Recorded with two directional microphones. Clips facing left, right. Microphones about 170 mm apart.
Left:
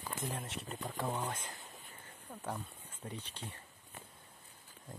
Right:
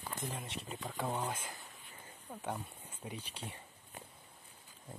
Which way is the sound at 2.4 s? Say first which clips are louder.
Right 1 dB; 10° right (ahead or behind).